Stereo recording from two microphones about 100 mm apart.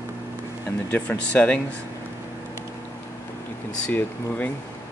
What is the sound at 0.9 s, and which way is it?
Speech, 15° left (ahead or behind).